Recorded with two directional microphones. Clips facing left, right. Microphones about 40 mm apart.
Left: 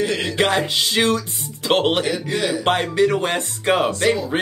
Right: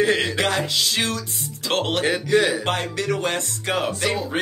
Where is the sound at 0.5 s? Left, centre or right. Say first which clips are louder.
Left 3 dB; centre.